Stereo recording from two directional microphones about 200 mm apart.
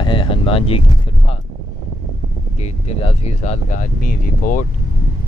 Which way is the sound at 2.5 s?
35° left (ahead or behind).